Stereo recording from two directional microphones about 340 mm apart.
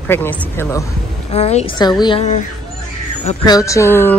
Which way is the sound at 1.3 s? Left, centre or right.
Centre.